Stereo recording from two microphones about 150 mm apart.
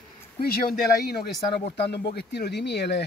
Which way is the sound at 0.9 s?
90° left.